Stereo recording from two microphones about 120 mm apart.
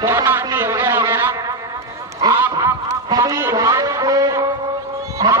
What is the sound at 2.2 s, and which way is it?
Honk, 40° right (ahead or behind).